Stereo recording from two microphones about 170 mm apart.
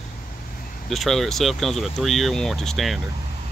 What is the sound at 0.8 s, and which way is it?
Speech, centre (ahead or behind).